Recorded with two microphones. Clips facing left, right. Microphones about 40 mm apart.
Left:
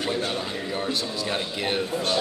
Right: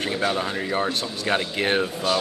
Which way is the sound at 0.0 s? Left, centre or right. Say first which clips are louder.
Right 3 dB; right.